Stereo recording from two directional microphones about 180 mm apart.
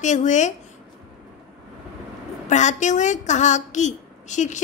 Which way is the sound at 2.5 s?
40° left (ahead or behind).